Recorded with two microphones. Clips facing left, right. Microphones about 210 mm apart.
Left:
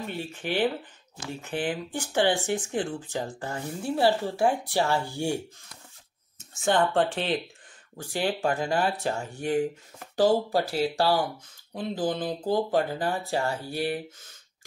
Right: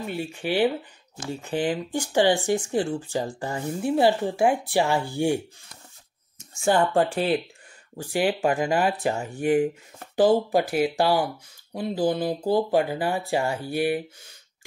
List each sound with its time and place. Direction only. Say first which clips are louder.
0.1 s speech: right 5 dB; 10° right (ahead or behind)
6.6 s speech: right 2 dB; 10° right (ahead or behind)